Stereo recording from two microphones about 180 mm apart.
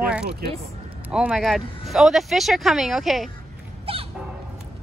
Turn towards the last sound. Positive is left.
turn(degrees=-30)  # may be behind; listen again after turning